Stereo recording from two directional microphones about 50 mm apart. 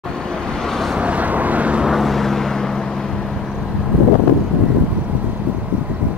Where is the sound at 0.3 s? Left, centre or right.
Centre.